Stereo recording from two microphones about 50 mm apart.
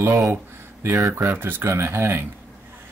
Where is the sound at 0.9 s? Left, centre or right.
Right.